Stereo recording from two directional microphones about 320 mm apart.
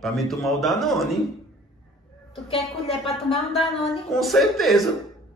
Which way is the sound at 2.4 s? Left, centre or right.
Centre.